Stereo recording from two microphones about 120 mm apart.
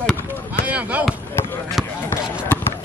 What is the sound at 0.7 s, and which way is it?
Speech, 10° right (ahead or behind).